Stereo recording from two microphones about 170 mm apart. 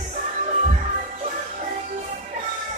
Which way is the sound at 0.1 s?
45° right (ahead or behind).